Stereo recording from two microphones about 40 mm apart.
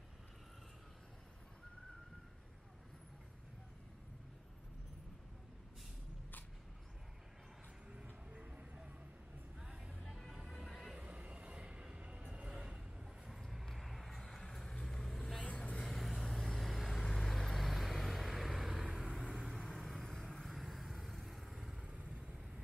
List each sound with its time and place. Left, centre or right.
7.9 s music: right
9.9 s music: centre
11.0 s train: right
12.5 s vehicle: centre
15.4 s vehicle: left
15.9 s vehicle: centre
19.5 s vehicle: centre
21.7 s vehicle: right